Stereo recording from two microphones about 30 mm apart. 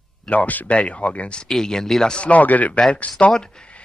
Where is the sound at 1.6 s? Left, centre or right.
Centre.